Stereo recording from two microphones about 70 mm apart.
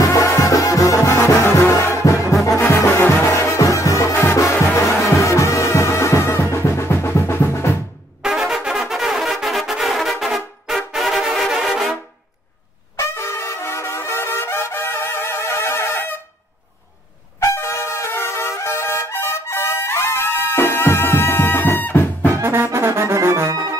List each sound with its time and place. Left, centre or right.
0.0 s music: left
2.4 s brass instrument: left
3.0 s music: left
8.2 s brass instrument: centre
12.9 s brass instrument: left
17.4 s music: left
22.4 s brass instrument: right